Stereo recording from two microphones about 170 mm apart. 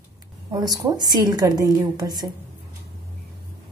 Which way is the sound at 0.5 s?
20° right (ahead or behind).